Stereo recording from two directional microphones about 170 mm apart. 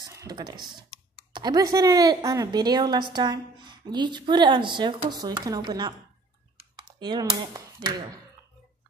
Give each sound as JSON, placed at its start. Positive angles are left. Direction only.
{"t": 0.0, "sound": "typing", "side_deg": -20}
{"t": 1.3, "sound": "a woman's voice", "side_deg": -25}